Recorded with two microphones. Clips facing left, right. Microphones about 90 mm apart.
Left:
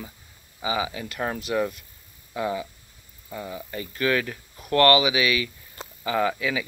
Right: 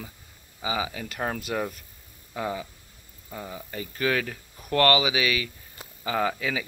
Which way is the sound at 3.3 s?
25° right (ahead or behind).